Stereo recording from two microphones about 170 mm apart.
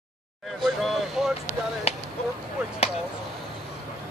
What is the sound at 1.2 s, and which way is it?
Vehicle, centre (ahead or behind).